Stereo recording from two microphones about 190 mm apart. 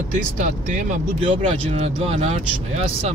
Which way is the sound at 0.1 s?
40° right (ahead or behind).